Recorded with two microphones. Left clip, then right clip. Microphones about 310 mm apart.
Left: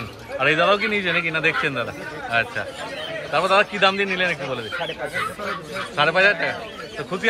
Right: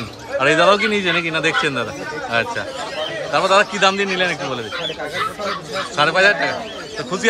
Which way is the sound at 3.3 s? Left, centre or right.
Centre.